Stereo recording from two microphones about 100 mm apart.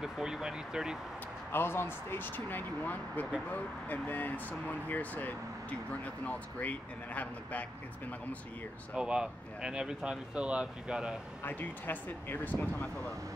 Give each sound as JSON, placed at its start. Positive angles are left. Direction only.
{"t": 0.0, "sound": "speech", "side_deg": -5}
{"t": 1.5, "sound": "speech", "side_deg": 20}
{"t": 8.9, "sound": "speech", "side_deg": -10}
{"t": 11.4, "sound": "speech", "side_deg": 20}